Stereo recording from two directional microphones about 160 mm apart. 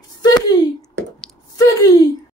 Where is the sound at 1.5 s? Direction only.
20° left (ahead or behind).